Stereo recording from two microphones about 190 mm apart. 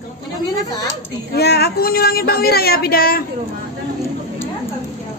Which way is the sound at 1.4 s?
60° left (ahead or behind).